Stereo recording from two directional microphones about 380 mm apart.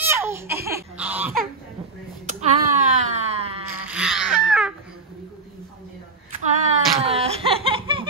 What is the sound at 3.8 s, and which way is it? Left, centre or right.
Babbling, centre.